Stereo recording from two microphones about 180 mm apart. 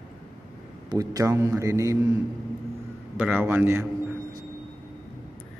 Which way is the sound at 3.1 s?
5° right (ahead or behind).